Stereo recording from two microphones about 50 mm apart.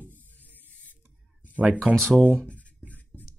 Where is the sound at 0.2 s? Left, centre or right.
Left.